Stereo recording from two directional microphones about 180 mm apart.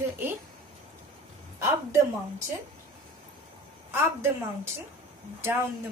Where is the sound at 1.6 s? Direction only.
15° right (ahead or behind).